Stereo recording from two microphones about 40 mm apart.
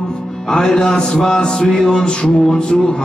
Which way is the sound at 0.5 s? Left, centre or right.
Centre.